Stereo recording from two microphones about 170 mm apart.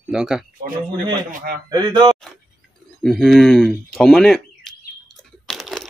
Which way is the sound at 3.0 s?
Centre (ahead or behind).